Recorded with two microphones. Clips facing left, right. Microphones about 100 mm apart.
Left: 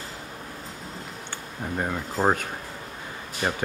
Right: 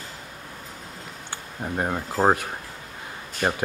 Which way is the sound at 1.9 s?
20° right (ahead or behind).